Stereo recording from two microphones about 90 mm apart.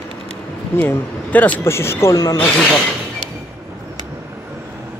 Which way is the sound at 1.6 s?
30° left (ahead or behind).